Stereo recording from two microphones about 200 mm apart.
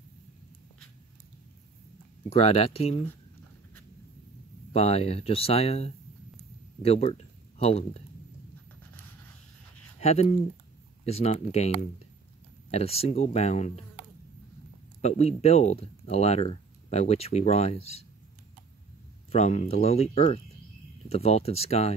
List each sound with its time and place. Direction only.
2.2 s speech: 30° left (ahead or behind)
4.7 s speech: 30° left (ahead or behind)
9.9 s speech: 30° left (ahead or behind)
15.0 s speech: 35° left (ahead or behind)
19.3 s speech: 35° left (ahead or behind)